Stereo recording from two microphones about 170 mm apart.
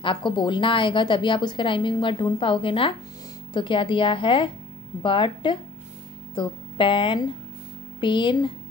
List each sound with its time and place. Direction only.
0.0 s a woman's voice: 30° left (ahead or behind)